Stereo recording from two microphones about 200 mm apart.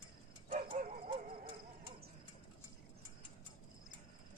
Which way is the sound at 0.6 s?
30° right (ahead or behind).